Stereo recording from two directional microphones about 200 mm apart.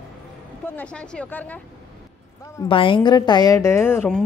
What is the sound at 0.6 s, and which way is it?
Speech, 5° left (ahead or behind).